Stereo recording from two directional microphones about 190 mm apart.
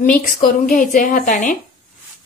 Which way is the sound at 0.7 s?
45° left (ahead or behind).